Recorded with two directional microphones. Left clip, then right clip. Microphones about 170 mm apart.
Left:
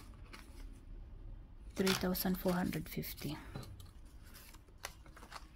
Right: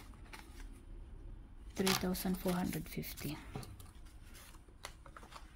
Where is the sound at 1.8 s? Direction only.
15° left (ahead or behind).